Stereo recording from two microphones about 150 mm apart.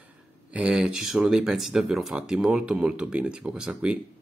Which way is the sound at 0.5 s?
10° right (ahead or behind).